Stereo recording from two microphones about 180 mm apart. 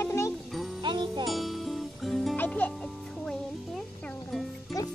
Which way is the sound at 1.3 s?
Centre (ahead or behind).